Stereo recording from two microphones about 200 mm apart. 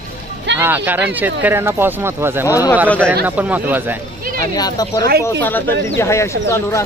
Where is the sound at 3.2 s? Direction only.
10° right (ahead or behind).